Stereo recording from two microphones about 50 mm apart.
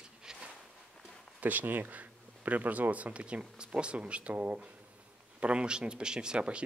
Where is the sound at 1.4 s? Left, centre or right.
Right.